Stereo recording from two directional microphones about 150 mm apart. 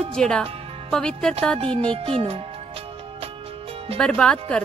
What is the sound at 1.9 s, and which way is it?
Speech, 40° right (ahead or behind).